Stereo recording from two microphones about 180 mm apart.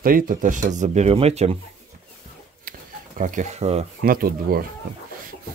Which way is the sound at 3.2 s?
45° right (ahead or behind).